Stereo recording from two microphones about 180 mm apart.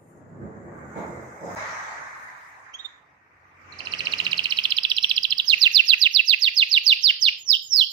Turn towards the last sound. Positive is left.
turn(degrees=-25)  # may be behind; listen again after turning